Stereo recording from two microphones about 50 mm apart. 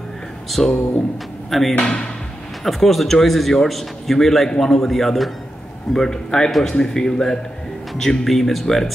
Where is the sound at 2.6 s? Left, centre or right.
Centre.